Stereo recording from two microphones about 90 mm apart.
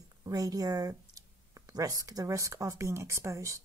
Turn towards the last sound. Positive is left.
turn(degrees=-35)  # may be behind; listen again after turning